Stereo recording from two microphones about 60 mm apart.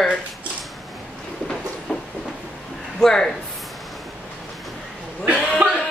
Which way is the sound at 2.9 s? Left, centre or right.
Centre.